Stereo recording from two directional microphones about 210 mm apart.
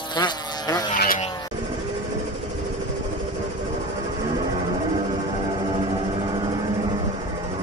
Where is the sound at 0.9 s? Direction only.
40° left (ahead or behind).